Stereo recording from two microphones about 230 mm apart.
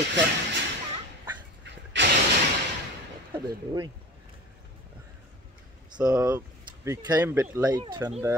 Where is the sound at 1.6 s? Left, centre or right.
Right.